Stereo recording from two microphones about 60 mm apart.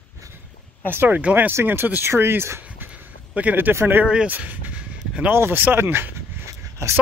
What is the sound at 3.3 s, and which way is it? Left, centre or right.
Speech, right.